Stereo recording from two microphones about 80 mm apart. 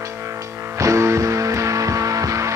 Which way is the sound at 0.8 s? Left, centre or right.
Right.